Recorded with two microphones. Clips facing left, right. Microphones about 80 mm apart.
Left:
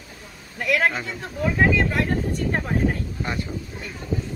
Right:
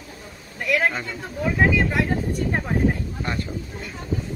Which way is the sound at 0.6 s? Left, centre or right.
Centre.